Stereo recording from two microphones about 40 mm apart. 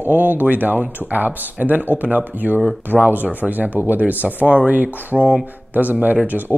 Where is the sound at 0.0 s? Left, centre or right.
Right.